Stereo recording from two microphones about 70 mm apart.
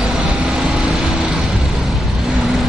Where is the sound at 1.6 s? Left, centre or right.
Centre.